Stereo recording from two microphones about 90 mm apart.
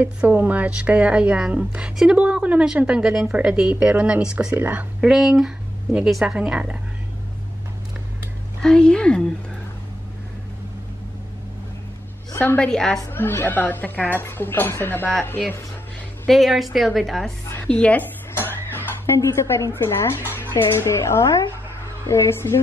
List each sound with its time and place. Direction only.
0.0 s speech: 20° right (ahead or behind)
5.1 s a woman's voice: 5° right (ahead or behind)
8.6 s a woman's voice: 10° left (ahead or behind)
12.5 s a woman's voice: 5° left (ahead or behind)
13.1 s speech: 20° left (ahead or behind)
16.3 s a woman's voice: centre (ahead or behind)
17.5 s music: 15° left (ahead or behind)
19.1 s speech: 30° left (ahead or behind)